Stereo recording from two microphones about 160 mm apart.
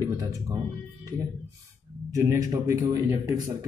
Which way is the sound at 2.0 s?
20° right (ahead or behind).